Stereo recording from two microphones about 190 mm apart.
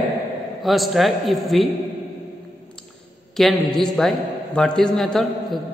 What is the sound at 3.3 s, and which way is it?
A man's voice, centre (ahead or behind).